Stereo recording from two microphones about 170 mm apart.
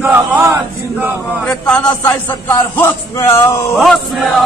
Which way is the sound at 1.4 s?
5° left (ahead or behind).